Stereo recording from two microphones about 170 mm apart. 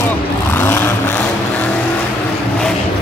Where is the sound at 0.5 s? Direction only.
15° left (ahead or behind).